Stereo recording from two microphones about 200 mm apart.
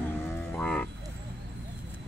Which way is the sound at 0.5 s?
5° left (ahead or behind).